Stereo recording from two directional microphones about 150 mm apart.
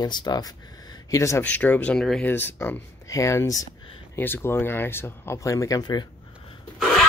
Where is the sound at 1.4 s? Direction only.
10° left (ahead or behind); by 6.0 s 25° left (ahead or behind).